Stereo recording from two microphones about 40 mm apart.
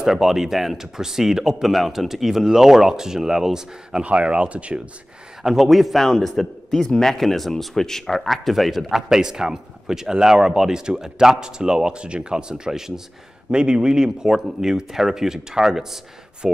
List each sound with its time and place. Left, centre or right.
0.0 s speech: centre
4.0 s speech: right
5.4 s speech: centre
9.1 s speech: centre